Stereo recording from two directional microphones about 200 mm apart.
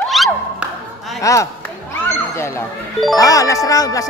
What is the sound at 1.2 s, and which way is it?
Speech, 15° left (ahead or behind).